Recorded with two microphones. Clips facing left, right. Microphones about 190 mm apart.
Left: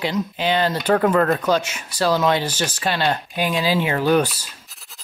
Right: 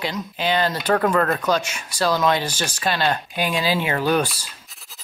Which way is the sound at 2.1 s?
10° left (ahead or behind).